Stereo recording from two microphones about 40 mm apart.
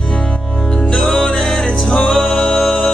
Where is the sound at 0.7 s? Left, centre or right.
Left.